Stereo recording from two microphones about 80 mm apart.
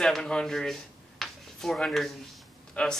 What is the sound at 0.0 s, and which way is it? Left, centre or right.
Speech, centre.